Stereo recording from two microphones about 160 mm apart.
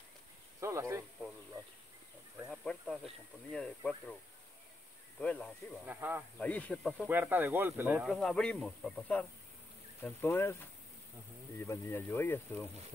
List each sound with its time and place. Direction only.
0.6 s speech: 20° right (ahead or behind)
2.4 s speech: 5° left (ahead or behind)
5.2 s speech: 5° left (ahead or behind)
5.9 s speech: 10° right (ahead or behind)
6.3 s speech: 10° left (ahead or behind)
7.1 s speech: 10° right (ahead or behind)
8.1 s speech: 5° left (ahead or behind)